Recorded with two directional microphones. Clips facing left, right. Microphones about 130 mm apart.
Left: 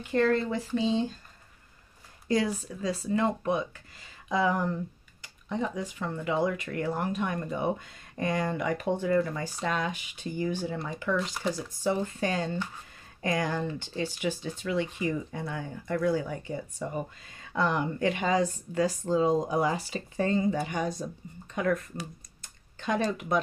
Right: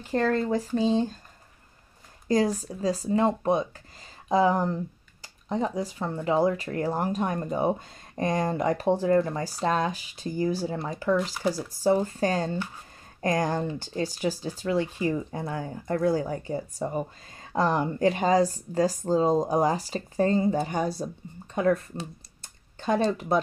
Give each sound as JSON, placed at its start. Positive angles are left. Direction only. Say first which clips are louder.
{"t": 0.0, "sound": "speech", "louder": "even", "side_deg": -40}
{"t": 2.2, "sound": "speech", "louder": "right 4 dB", "side_deg": -40}
{"t": 11.1, "sound": "speech", "louder": "right 4 dB", "side_deg": -5}
{"t": 11.5, "sound": "speech", "louder": "right 8 dB", "side_deg": -40}